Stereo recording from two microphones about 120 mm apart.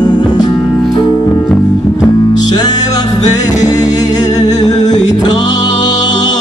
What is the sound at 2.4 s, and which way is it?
Music, 35° left (ahead or behind).